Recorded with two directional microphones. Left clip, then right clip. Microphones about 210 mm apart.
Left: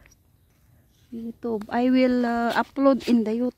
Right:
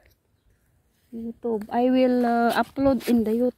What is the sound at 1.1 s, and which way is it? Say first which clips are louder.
Speech: right 2 dB; 25° left (ahead or behind).